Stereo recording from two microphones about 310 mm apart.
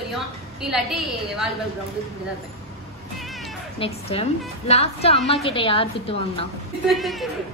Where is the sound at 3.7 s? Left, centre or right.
Centre.